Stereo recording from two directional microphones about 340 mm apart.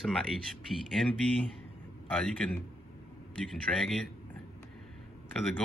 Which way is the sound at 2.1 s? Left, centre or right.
Centre.